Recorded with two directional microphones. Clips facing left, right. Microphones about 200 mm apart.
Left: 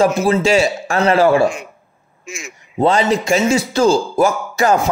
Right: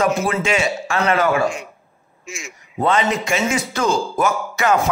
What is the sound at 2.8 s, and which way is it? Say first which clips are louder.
Speech: left 4 dB; 30° left (ahead or behind).